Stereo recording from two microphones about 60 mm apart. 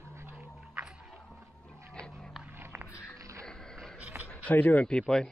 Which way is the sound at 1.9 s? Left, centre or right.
Centre.